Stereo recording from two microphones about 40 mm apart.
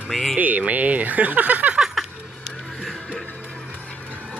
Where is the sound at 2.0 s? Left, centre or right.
Centre.